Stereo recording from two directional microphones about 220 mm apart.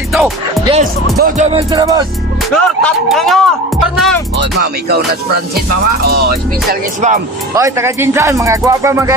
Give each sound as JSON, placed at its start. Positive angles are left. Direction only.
{"t": 0.1, "sound": "music", "side_deg": 0}
{"t": 1.2, "sound": "speech", "side_deg": -30}
{"t": 1.7, "sound": "music", "side_deg": -15}
{"t": 2.5, "sound": "speech", "side_deg": 0}
{"t": 4.4, "sound": "music", "side_deg": -45}
{"t": 6.7, "sound": "speech", "side_deg": -35}
{"t": 7.5, "sound": "music", "side_deg": -15}